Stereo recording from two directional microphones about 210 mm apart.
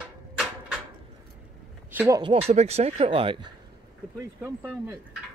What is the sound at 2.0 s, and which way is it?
Speech, 15° right (ahead or behind).